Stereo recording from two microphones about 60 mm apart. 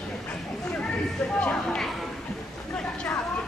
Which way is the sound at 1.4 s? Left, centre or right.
Left.